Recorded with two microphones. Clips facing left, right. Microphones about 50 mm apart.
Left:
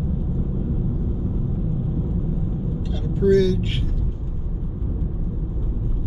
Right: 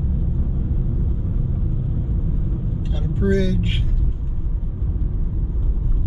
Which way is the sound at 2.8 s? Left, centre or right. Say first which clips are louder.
Left 3 dB; right.